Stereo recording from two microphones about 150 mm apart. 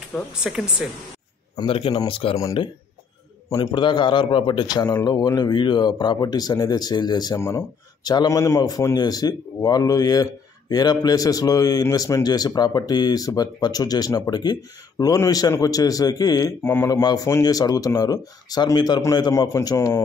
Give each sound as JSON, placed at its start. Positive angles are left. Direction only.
{"t": 0.4, "sound": "speech", "side_deg": -5}
{"t": 1.6, "sound": "a man's voice", "side_deg": 40}
{"t": 2.3, "sound": "speech", "side_deg": 25}
{"t": 16.6, "sound": "speech", "side_deg": 15}